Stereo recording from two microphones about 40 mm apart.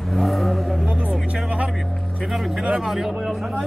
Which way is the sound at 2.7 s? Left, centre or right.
Centre.